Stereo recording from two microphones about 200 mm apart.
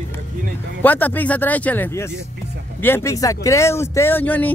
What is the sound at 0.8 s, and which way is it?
Speech, 10° left (ahead or behind).